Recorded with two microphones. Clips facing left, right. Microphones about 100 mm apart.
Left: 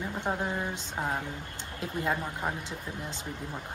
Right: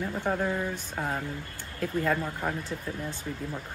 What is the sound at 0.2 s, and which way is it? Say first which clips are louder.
Speech: right 3 dB; 20° left (ahead or behind).